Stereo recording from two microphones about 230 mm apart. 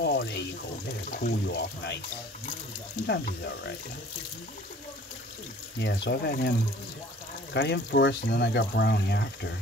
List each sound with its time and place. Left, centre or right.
0.0 s speech: left
3.1 s speech: left
5.8 s speech: left
7.5 s speech: left